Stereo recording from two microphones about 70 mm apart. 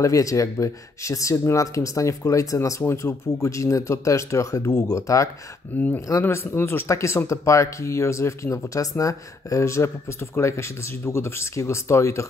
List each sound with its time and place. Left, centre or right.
0.0 s speech: left
2.8 s speech: left
6.2 s speech: left
6.9 s speech: left